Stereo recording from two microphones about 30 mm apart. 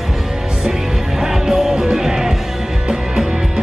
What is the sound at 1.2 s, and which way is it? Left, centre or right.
Music, centre.